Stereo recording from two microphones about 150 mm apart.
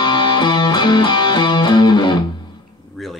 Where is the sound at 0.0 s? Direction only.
30° left (ahead or behind).